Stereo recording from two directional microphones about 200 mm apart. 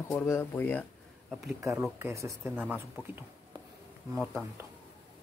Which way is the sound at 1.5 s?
15° right (ahead or behind).